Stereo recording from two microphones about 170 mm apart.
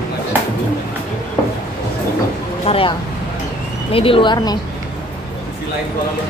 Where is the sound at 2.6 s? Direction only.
35° left (ahead or behind).